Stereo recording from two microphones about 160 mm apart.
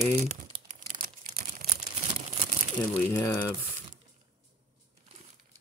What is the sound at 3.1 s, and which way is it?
Speech, 20° left (ahead or behind).